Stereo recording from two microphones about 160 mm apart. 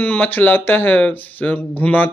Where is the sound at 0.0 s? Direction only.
10° left (ahead or behind).